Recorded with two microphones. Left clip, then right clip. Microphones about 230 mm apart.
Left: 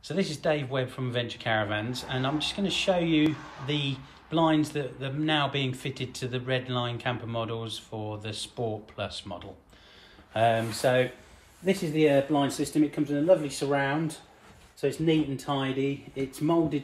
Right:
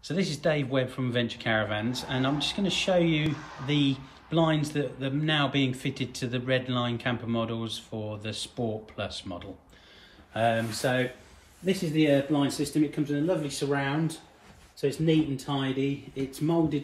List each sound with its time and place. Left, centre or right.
0.0 s a man's voice: centre
10.3 s speech: left
12.4 s speech: left
14.8 s speech: centre